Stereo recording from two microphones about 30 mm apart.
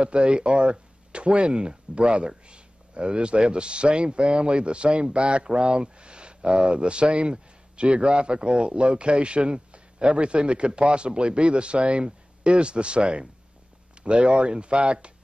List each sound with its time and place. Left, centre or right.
0.0 s speech: right